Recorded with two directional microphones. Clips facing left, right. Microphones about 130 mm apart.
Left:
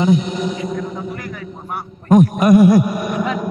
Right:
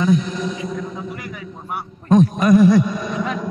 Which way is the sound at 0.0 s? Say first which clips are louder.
Left 2 dB; 25° left (ahead or behind).